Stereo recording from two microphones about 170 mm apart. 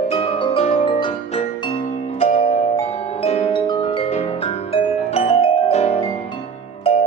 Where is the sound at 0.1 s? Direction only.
35° left (ahead or behind).